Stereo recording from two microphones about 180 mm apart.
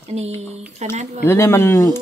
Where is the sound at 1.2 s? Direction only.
15° left (ahead or behind).